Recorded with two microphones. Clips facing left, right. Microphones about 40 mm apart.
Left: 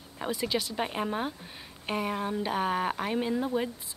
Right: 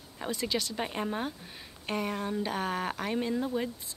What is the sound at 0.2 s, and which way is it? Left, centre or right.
A woman's voice, centre.